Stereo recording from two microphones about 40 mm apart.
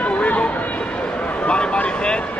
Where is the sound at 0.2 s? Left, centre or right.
Left.